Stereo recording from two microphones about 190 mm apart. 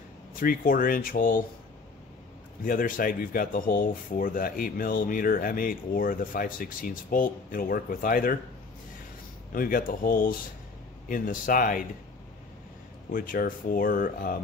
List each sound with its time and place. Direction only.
0.4 s speech: 50° left (ahead or behind)
2.6 s speech: 45° left (ahead or behind)
9.5 s speech: 45° left (ahead or behind)
13.1 s speech: 45° left (ahead or behind)